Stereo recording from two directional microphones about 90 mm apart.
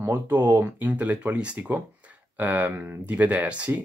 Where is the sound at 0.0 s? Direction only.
20° right (ahead or behind).